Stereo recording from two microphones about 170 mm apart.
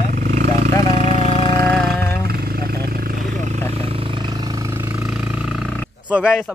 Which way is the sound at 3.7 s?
35° right (ahead or behind).